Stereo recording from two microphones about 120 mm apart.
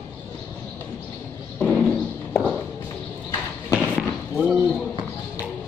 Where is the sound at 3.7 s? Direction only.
15° left (ahead or behind).